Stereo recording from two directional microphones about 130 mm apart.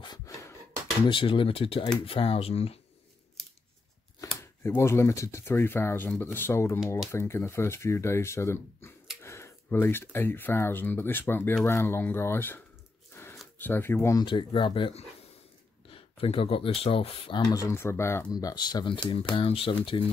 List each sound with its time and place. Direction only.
0.0 s a sound: 30° left (ahead or behind)
1.0 s speech: 40° left (ahead or behind)
4.4 s speech: 20° left (ahead or behind)
13.1 s a sound: 20° left (ahead or behind)
13.6 s speech: 15° left (ahead or behind)
14.1 s speech: 35° left (ahead or behind)
17.5 s speech: 25° left (ahead or behind)
18.3 s speech: 30° left (ahead or behind)